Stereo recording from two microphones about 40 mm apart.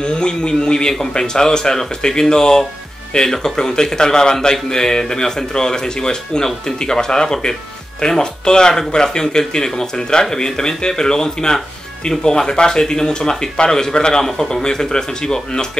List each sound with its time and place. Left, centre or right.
0.0 s a man's voice: left